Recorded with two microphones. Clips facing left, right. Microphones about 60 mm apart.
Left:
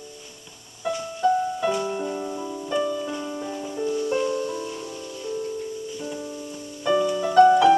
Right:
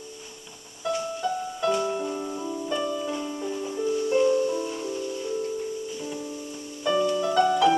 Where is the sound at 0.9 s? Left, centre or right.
Centre.